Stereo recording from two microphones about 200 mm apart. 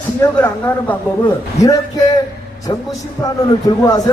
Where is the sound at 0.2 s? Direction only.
10° left (ahead or behind).